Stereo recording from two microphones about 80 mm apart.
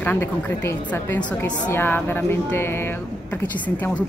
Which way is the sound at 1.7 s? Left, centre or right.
Left.